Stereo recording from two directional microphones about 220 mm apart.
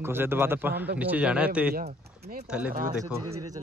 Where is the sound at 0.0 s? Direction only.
10° right (ahead or behind).